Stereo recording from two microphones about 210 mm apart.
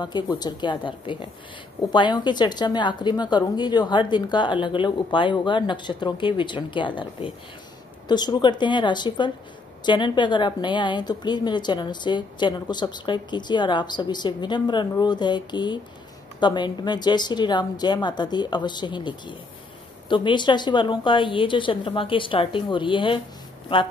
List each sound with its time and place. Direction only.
0.0 s a woman's voice: 20° left (ahead or behind)